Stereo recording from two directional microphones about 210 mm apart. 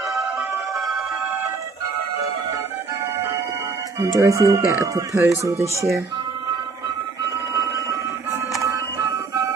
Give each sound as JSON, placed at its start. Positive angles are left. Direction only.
{"t": 0.1, "sound": "music", "side_deg": 0}
{"t": 4.0, "sound": "speech", "side_deg": -15}
{"t": 7.5, "sound": "a sound", "side_deg": -15}